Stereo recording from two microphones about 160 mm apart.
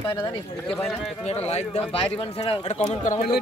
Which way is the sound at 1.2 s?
40° left (ahead or behind).